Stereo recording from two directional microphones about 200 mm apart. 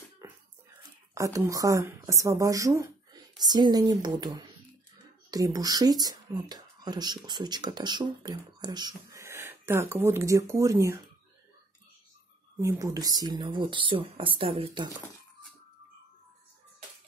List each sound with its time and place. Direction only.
0.2 s a sound: 15° right (ahead or behind)
1.1 s speech: 15° right (ahead or behind)
12.5 s speech: 15° right (ahead or behind)